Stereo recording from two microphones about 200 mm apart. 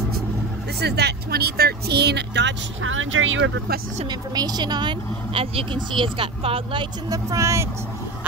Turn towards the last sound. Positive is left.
turn(degrees=-15)  # may be behind; listen again after turning